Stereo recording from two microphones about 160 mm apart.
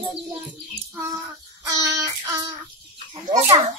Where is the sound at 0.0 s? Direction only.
30° right (ahead or behind).